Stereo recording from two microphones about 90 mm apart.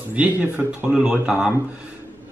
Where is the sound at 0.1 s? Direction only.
15° right (ahead or behind).